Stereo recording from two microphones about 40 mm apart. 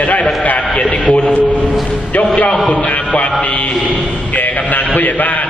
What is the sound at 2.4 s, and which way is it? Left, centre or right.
Speech, left.